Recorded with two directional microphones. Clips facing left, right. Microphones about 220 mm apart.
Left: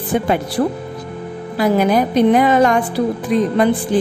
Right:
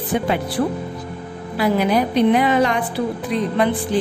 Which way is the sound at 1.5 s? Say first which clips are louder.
Left 3 dB; 45° left (ahead or behind).